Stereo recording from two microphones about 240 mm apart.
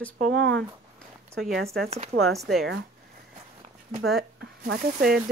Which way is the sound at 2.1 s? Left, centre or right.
Right.